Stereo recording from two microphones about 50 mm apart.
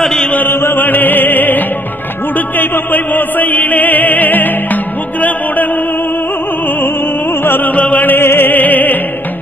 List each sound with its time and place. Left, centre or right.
0.0 s chant: centre
0.5 s chant: left
0.8 s music: left
6.8 s music: left
7.7 s music: left